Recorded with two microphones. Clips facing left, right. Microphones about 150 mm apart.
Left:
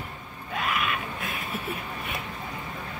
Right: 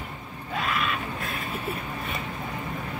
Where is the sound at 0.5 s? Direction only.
5° left (ahead or behind).